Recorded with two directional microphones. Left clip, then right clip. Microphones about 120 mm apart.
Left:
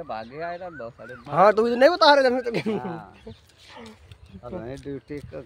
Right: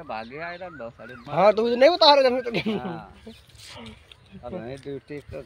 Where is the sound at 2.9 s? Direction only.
45° left (ahead or behind).